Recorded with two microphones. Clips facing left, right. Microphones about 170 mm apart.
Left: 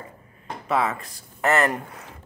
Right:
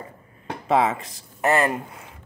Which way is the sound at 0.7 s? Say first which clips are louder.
Right 4 dB; 25° right (ahead or behind).